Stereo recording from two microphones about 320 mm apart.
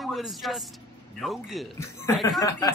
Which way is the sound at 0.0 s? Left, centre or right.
Centre.